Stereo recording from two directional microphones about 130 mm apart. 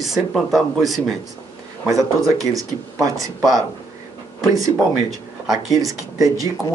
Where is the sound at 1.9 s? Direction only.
25° right (ahead or behind).